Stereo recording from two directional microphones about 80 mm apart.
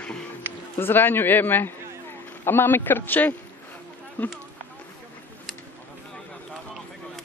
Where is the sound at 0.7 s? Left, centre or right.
Left.